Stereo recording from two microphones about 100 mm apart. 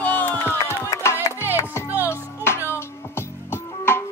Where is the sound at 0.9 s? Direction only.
30° left (ahead or behind).